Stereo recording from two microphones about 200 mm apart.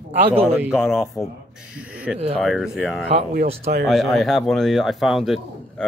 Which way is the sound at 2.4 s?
Centre (ahead or behind).